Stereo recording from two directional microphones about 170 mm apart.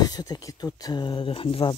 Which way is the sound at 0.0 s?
25° left (ahead or behind).